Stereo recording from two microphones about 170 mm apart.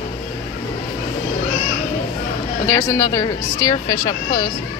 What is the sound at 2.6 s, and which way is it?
Speech, 15° left (ahead or behind).